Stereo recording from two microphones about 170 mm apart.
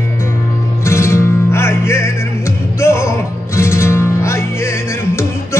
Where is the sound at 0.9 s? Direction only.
15° left (ahead or behind).